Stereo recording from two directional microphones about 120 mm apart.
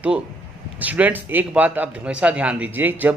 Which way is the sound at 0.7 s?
15° right (ahead or behind).